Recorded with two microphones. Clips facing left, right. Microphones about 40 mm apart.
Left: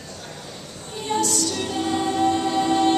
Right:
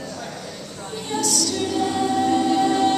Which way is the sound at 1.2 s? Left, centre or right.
Left.